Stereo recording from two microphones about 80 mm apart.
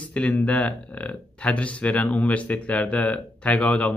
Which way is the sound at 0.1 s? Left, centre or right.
Centre.